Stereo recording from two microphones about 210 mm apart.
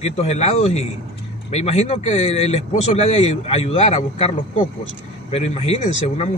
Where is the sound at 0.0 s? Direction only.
30° left (ahead or behind).